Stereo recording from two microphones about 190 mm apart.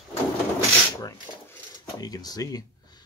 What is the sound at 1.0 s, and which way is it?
Cutlery, 15° left (ahead or behind).